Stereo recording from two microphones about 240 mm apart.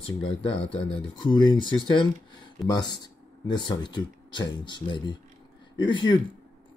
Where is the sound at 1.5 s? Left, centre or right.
Centre.